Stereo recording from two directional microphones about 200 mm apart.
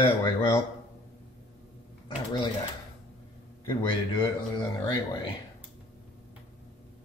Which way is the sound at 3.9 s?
20° left (ahead or behind).